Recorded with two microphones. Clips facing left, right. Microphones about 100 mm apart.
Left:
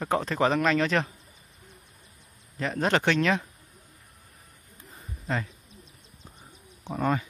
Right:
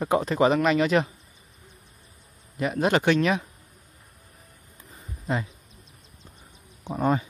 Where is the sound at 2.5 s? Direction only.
10° right (ahead or behind).